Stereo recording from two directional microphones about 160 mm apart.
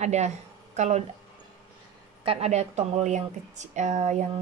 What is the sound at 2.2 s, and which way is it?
Speech, 40° right (ahead or behind).